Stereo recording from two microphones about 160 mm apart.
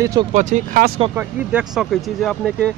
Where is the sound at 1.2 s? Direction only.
10° right (ahead or behind).